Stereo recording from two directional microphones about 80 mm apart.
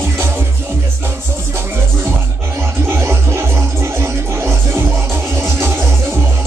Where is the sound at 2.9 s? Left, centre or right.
Right.